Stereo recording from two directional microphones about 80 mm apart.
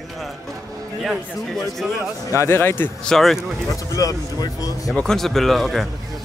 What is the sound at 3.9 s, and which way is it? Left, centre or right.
Speech, left.